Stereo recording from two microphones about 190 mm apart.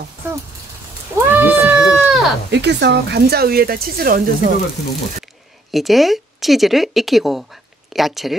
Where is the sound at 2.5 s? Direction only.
65° right (ahead or behind).